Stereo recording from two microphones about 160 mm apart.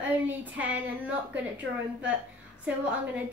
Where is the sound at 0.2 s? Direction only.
10° right (ahead or behind).